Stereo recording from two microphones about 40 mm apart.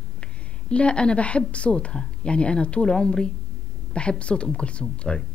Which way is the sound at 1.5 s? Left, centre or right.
Left.